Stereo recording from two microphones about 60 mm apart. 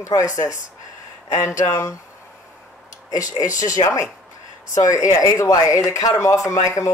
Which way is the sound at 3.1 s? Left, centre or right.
Left.